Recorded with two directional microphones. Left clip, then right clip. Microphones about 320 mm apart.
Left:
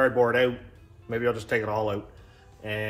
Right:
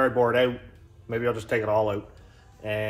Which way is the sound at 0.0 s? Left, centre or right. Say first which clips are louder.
Even; centre.